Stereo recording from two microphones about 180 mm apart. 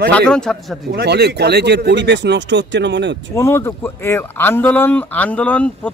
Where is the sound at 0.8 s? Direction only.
65° right (ahead or behind).